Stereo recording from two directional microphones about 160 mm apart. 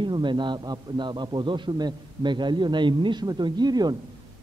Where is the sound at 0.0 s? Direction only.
30° right (ahead or behind).